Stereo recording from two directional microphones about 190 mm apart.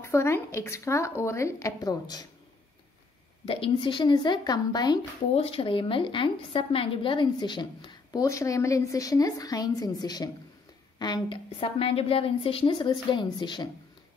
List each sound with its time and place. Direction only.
0.0 s speech: 15° left (ahead or behind)
3.4 s speech: 25° left (ahead or behind)